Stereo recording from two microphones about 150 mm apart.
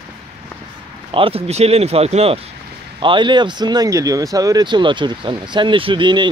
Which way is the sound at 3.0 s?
35° right (ahead or behind).